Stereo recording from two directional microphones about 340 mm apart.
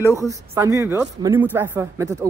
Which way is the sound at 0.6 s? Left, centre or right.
Centre.